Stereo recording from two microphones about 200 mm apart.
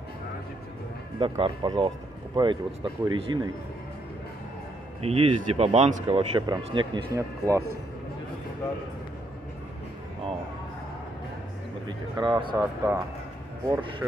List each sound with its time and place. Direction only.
1.4 s speech: 25° right (ahead or behind)
5.0 s speech: 30° right (ahead or behind)
12.2 s speech: 25° right (ahead or behind)